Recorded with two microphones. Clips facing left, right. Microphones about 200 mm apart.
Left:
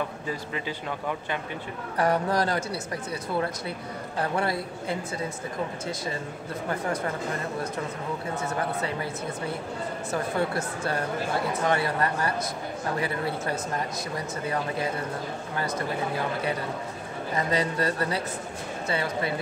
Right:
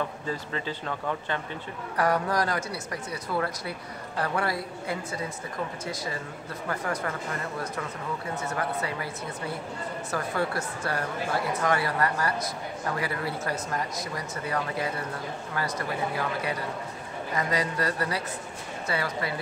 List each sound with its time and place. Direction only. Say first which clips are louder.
0.3 s speech: even; 15° left (ahead or behind)
2.0 s speech: left 1 dB; 25° left (ahead or behind)
8.5 s speech: left 1 dB; 25° left (ahead or behind)
17.3 s speech: left 2 dB; 25° left (ahead or behind)